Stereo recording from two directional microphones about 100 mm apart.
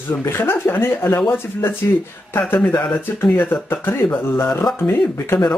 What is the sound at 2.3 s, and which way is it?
Speech, 20° left (ahead or behind).